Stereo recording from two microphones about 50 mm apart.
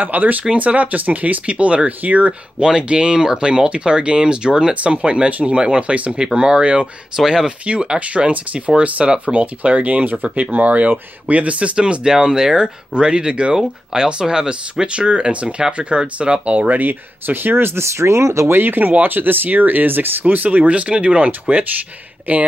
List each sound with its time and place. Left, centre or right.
0.0 s speech: right
2.6 s speech: centre
7.2 s speech: centre
7.6 s speech: right
11.7 s speech: centre; by 18.5 s right
18.5 s speech: right